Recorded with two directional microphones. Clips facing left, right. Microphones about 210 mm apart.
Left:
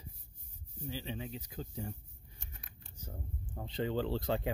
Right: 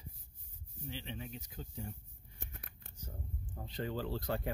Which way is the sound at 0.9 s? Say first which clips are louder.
Left 4 dB; 40° left (ahead or behind).